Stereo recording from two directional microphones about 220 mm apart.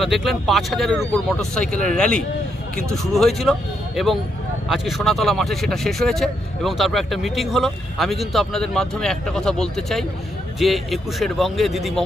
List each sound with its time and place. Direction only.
0.0 s speech: centre (ahead or behind)